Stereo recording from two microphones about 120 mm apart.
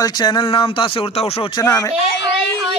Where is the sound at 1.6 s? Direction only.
25° left (ahead or behind).